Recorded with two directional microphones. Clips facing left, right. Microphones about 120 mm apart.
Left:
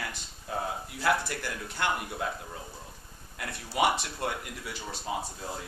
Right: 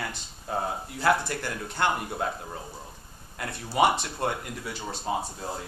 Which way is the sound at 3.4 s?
35° right (ahead or behind).